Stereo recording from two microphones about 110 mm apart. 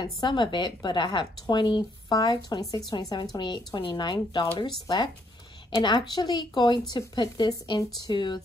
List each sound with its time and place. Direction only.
0.0 s speech: 45° left (ahead or behind)